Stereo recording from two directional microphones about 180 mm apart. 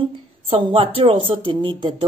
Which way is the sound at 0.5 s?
30° right (ahead or behind).